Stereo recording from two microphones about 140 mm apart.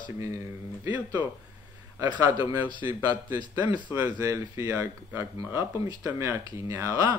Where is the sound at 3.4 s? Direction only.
35° left (ahead or behind).